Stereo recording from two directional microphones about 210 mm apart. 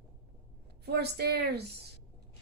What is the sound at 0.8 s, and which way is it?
Speech, 50° right (ahead or behind).